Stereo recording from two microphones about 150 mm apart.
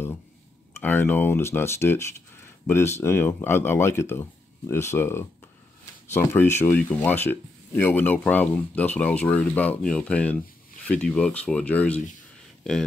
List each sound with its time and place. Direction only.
0.7 s speech: 15° left (ahead or behind)